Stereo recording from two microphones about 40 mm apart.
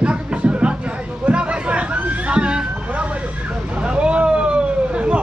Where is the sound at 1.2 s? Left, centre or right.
Right.